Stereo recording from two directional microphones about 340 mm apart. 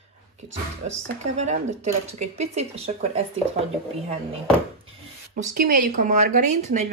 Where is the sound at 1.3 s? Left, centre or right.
Centre.